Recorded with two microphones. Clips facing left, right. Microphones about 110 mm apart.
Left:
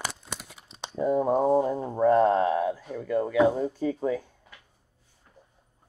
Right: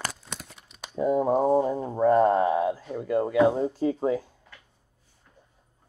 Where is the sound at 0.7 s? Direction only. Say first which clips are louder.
Left 7 dB; 30° left (ahead or behind).